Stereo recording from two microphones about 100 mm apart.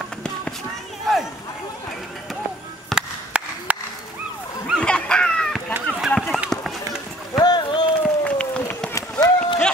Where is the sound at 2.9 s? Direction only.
10° right (ahead or behind).